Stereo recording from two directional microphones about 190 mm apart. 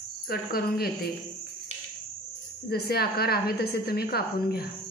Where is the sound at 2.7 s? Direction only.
55° left (ahead or behind).